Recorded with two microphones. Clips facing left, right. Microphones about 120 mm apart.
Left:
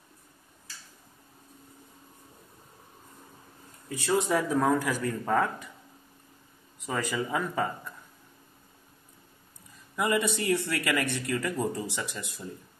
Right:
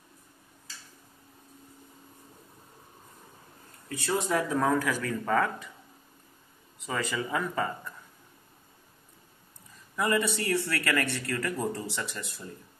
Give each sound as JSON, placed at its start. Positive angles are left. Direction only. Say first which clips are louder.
{"t": 4.0, "sound": "speech", "louder": "left 2 dB", "side_deg": 15}
{"t": 6.9, "sound": "speech", "louder": "left 1 dB", "side_deg": 10}
{"t": 9.9, "sound": "speech", "louder": "even", "side_deg": 15}